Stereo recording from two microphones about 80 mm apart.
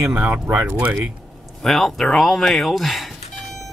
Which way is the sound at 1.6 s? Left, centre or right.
Centre.